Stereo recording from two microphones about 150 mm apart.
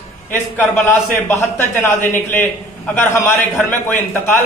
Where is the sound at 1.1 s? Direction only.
15° left (ahead or behind).